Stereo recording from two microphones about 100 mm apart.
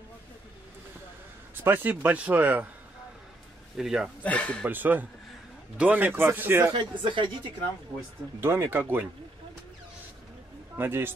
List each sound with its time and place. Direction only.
1.5 s speech: 20° right (ahead or behind)
3.7 s a man's voice: 5° right (ahead or behind)
4.2 s speech: 15° left (ahead or behind)
4.6 s speech: 20° right (ahead or behind)
6.7 s speech: 50° right (ahead or behind)
8.4 s speech: 25° right (ahead or behind)
10.8 s speech: 20° right (ahead or behind)